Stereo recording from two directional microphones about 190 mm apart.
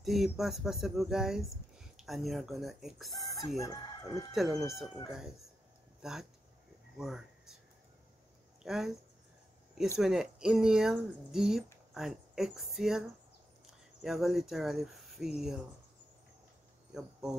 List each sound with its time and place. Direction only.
0.0 s speech: centre (ahead or behind)
3.6 s speech: 15° left (ahead or behind)
4.3 s speech: centre (ahead or behind)
8.6 s speech: centre (ahead or behind)
9.9 s speech: centre (ahead or behind)
14.0 s speech: centre (ahead or behind)
16.9 s cricket: 5° right (ahead or behind)